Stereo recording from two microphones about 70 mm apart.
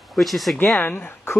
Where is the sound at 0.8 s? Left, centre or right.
Left.